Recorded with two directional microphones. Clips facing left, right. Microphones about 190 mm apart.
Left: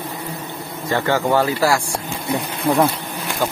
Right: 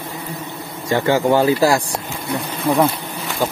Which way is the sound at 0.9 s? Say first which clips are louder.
Right 3 dB; 15° right (ahead or behind).